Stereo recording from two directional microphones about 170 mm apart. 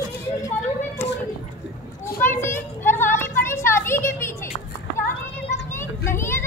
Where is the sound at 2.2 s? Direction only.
15° left (ahead or behind).